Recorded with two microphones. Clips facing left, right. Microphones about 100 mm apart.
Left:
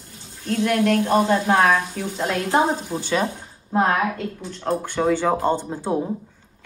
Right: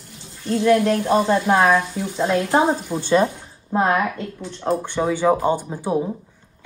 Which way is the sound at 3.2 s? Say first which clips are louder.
Right 4 dB; 15° right (ahead or behind).